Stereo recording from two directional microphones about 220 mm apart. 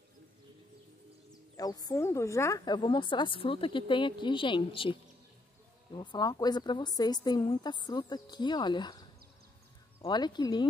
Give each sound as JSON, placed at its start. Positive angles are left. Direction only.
{"t": 1.3, "sound": "speech", "side_deg": 15}
{"t": 5.9, "sound": "speech", "side_deg": 20}
{"t": 10.0, "sound": "speech", "side_deg": 20}